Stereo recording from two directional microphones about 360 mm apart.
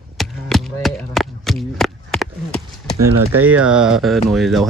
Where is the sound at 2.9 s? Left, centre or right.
Right.